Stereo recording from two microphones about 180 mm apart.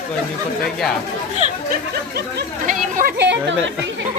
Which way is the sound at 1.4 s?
40° right (ahead or behind).